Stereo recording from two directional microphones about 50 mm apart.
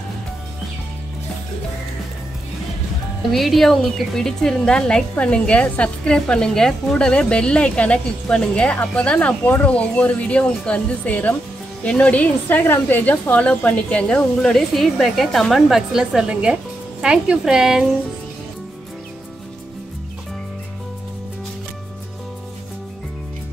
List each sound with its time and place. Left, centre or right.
3.2 s a woman's voice: centre; by 12.3 s left
12.4 s a woman's voice: left; by 14.6 s centre
14.7 s a woman's voice: centre
15.5 s a woman's voice: centre